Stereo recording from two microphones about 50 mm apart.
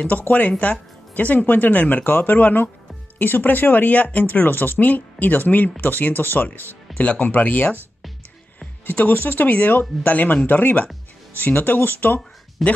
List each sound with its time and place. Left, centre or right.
0.3 s speech: left
8.8 s speech: left
12.6 s speech: centre